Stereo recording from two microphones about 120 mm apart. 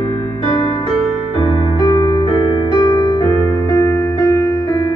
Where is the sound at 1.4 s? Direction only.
45° left (ahead or behind).